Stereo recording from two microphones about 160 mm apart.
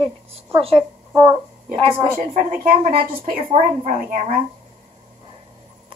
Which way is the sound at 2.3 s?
55° right (ahead or behind).